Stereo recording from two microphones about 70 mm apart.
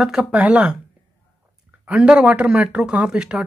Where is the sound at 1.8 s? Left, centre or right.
Centre.